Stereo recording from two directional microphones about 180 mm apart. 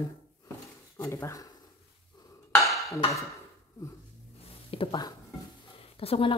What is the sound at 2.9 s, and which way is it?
Speech, 15° left (ahead or behind).